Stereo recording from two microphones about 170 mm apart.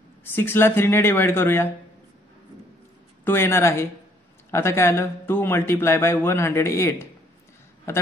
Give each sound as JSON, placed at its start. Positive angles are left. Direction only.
{"t": 0.2, "sound": "speech", "side_deg": 15}
{"t": 3.3, "sound": "speech", "side_deg": 15}